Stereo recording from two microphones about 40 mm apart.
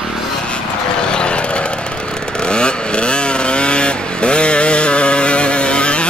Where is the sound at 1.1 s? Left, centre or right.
Left.